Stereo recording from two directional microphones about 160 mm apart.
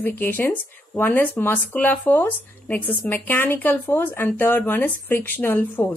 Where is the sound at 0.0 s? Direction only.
10° left (ahead or behind).